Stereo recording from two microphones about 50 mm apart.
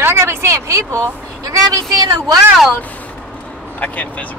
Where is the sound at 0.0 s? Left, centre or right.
Right.